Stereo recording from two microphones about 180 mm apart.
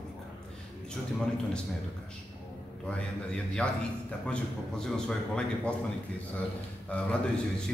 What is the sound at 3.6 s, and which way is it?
A man's voice, 5° left (ahead or behind).